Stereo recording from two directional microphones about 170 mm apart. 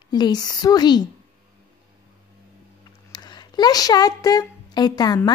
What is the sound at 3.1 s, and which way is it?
A woman's voice, 25° left (ahead or behind).